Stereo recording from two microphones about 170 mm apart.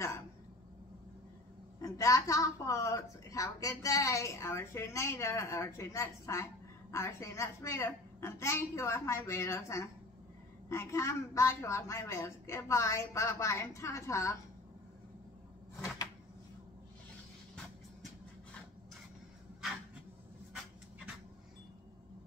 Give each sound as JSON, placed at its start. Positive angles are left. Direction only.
{"t": 1.8, "sound": "a woman's voice", "side_deg": 20}